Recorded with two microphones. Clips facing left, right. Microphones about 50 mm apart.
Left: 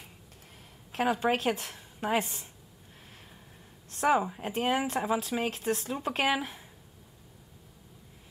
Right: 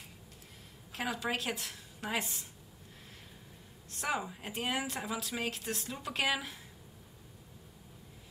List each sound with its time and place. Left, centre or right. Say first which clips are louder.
0.9 s speech: left 8 dB; left
3.9 s a sound: left 10 dB; left
4.2 s speech: left 7 dB; left